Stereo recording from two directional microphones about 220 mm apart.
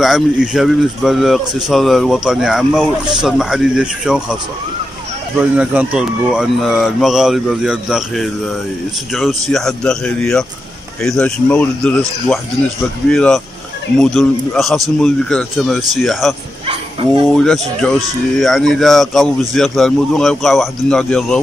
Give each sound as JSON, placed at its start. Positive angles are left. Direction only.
{"t": 0.0, "sound": "speech", "side_deg": 0}
{"t": 5.4, "sound": "speech", "side_deg": -5}
{"t": 13.1, "sound": "speech", "side_deg": 0}
{"t": 16.6, "sound": "speech", "side_deg": -25}
{"t": 17.3, "sound": "speech", "side_deg": 0}